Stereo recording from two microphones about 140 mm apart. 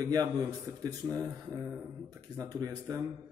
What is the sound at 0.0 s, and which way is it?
Speech, 25° right (ahead or behind).